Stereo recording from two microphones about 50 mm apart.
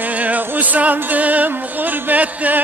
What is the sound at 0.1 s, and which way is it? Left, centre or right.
Music, right.